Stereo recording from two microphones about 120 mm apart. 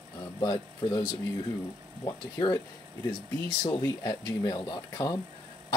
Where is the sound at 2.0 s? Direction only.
30° left (ahead or behind).